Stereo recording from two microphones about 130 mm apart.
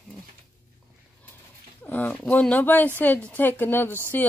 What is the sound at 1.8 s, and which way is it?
A woman's voice, 15° left (ahead or behind).